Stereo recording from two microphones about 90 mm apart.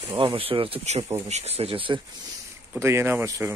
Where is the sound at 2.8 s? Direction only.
25° right (ahead or behind).